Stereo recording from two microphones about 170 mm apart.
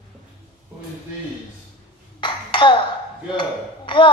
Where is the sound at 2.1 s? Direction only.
30° left (ahead or behind).